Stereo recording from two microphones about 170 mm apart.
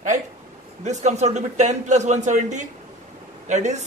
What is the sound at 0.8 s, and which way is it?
A man's voice, 45° right (ahead or behind).